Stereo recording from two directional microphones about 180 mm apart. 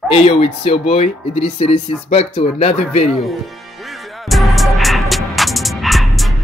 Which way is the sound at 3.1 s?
Centre (ahead or behind).